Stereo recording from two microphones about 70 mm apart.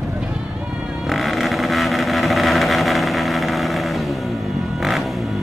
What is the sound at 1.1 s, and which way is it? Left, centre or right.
Vehicle, centre.